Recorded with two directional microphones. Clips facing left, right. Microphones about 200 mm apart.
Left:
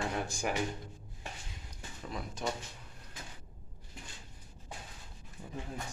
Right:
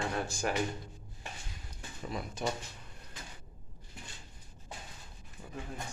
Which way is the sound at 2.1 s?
Centre (ahead or behind).